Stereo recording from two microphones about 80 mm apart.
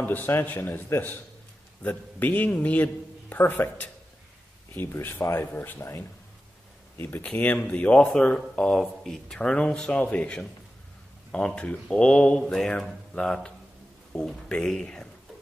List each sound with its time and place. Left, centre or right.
0.0 s a man's voice: left; by 15.0 s centre